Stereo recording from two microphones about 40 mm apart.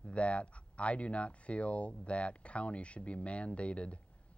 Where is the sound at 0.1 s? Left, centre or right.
Left.